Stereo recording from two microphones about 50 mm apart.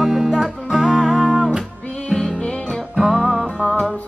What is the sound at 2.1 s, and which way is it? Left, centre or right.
Music, centre.